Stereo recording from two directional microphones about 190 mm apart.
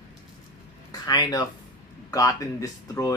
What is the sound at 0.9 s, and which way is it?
Speech, 20° left (ahead or behind).